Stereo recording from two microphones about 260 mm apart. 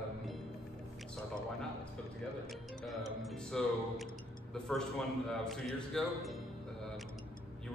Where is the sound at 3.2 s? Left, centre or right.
Centre.